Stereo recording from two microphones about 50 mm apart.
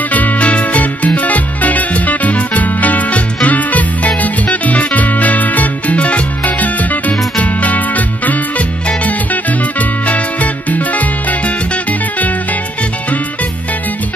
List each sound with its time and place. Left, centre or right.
0.1 s music: left